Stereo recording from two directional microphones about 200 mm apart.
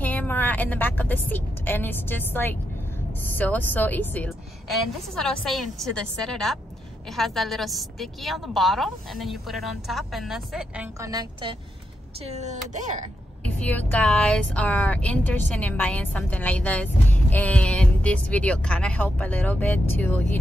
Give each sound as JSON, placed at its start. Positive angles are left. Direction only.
{"t": 0.0, "sound": "a woman's voice", "side_deg": 10}
{"t": 11.0, "sound": "a woman's voice", "side_deg": -20}
{"t": 12.3, "sound": "speech", "side_deg": -35}
{"t": 13.4, "sound": "a woman's voice", "side_deg": 5}